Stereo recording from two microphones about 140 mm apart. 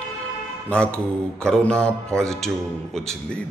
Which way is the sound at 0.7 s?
5° left (ahead or behind).